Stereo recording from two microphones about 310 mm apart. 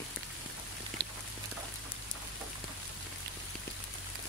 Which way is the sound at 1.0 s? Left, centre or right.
Right.